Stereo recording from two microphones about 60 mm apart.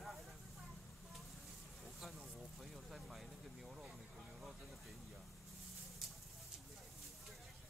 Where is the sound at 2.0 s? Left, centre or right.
Centre.